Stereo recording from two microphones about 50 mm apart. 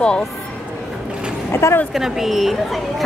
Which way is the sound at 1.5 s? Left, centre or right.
Left.